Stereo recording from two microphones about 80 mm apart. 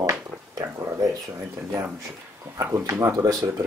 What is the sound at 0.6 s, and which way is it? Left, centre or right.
Speech, right.